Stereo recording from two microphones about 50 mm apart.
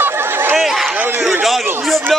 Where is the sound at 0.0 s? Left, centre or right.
Right.